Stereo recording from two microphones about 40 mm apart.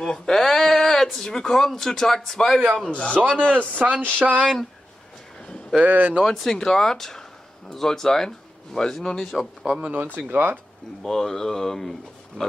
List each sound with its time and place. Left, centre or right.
0.0 s speech: centre
2.9 s a man's voice: left
3.5 s speech: right
5.8 s speech: right
6.2 s speech: centre
9.9 s speech: right
11.0 s speech: centre